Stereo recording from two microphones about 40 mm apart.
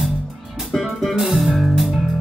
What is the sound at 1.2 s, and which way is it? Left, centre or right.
Music, centre.